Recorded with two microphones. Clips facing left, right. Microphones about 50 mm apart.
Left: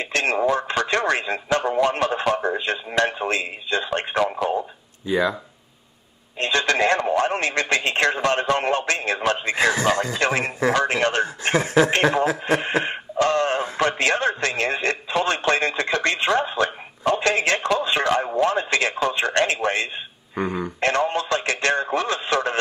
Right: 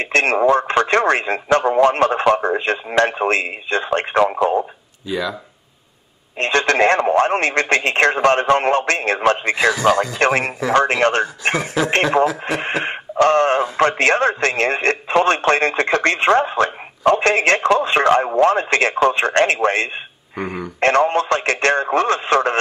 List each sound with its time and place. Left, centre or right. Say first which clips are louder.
0.0 s speech: right 6 dB; right
6.3 s speech: right 4 dB; right